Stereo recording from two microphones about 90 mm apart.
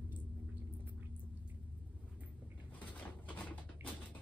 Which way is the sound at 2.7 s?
20° left (ahead or behind).